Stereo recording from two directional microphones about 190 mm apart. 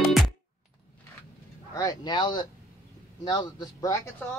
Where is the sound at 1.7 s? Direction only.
20° left (ahead or behind).